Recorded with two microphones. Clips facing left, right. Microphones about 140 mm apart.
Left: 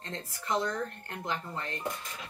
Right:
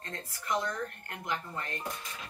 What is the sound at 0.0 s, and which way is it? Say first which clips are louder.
Speech: left 2 dB; 25° left (ahead or behind).